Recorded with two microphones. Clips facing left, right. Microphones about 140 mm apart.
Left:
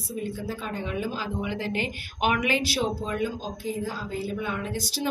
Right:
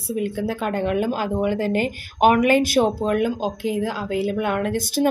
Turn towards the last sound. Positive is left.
turn(degrees=-55)  # may be behind; listen again after turning